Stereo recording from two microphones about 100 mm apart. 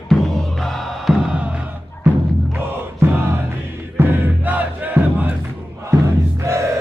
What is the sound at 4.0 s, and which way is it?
Crowd, 20° right (ahead or behind).